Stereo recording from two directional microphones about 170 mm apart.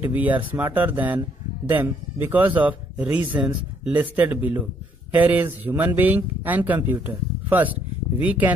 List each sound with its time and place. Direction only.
0.0 s speech: 10° right (ahead or behind)